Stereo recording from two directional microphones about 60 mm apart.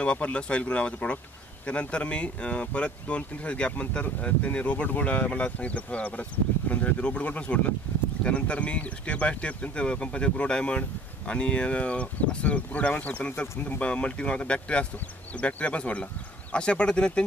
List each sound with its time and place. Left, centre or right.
0.0 s speech: centre